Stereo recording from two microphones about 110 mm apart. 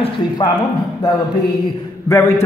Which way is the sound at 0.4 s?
35° left (ahead or behind).